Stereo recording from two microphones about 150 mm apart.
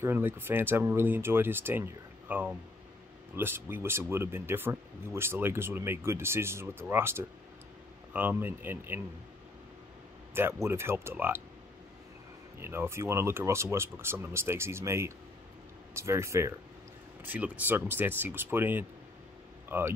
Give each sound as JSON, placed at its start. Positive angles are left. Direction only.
{"t": 0.0, "sound": "speech", "side_deg": -15}
{"t": 10.3, "sound": "speech", "side_deg": -15}
{"t": 12.5, "sound": "speech", "side_deg": -15}